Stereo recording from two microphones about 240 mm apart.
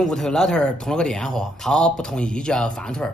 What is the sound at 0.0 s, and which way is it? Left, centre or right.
Speech, centre.